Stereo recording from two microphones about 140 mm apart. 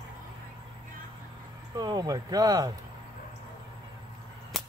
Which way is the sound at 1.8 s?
30° right (ahead or behind).